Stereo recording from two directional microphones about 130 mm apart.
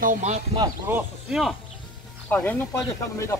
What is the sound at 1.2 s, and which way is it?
Speech, centre (ahead or behind).